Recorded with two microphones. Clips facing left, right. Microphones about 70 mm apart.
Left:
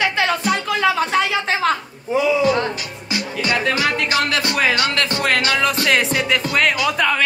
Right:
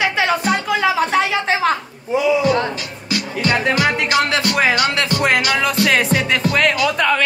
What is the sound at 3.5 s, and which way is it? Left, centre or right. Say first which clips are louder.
Music: right 3 dB; right.